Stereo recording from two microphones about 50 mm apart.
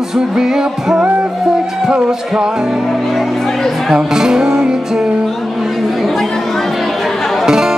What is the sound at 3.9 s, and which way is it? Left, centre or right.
Music, centre.